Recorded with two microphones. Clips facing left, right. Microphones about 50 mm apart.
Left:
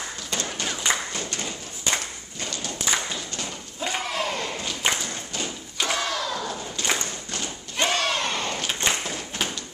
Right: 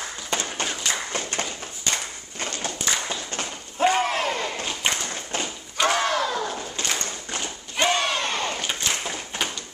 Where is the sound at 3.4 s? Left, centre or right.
Right.